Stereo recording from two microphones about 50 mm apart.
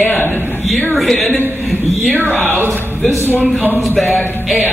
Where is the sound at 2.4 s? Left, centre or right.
Right.